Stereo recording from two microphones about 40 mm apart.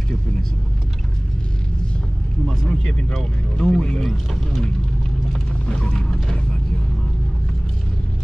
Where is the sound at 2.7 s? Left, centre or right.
Left.